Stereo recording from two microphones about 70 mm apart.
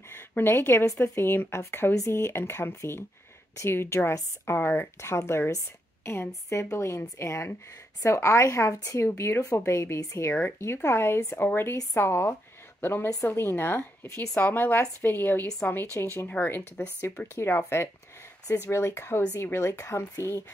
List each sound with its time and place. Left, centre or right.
0.4 s a woman's voice: left
14.4 s a woman's voice: left